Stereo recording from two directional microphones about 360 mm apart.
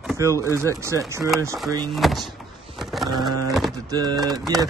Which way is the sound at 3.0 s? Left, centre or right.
Centre.